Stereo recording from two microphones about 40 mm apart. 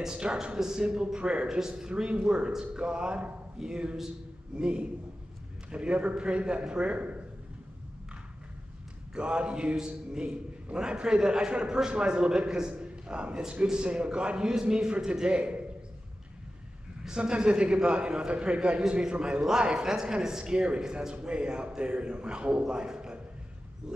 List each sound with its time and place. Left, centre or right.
0.1 s a man's voice: right
0.6 s a man's voice: centre; by 7.2 s right
9.1 s a man's voice: right
17.2 s a man's voice: right